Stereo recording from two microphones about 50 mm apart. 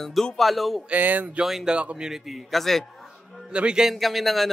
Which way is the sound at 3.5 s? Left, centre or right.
Centre.